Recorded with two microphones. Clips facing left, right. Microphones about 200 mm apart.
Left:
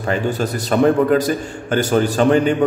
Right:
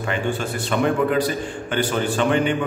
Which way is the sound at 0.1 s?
40° left (ahead or behind).